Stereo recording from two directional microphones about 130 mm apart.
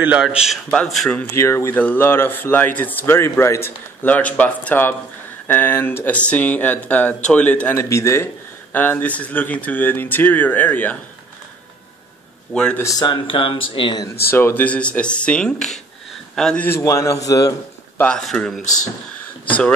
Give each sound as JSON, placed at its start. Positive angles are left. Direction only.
{"t": 0.0, "sound": "a man's voice", "side_deg": -10}
{"t": 1.3, "sound": "speech", "side_deg": 20}
{"t": 12.5, "sound": "speech", "side_deg": 5}
{"t": 13.0, "sound": "speech", "side_deg": 40}
{"t": 14.0, "sound": "speech", "side_deg": 20}
{"t": 16.6, "sound": "a man's voice", "side_deg": 25}
{"t": 17.9, "sound": "a man's voice", "side_deg": 10}
{"t": 18.6, "sound": "speech", "side_deg": 75}